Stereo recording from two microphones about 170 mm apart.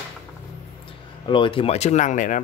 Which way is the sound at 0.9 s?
30° left (ahead or behind).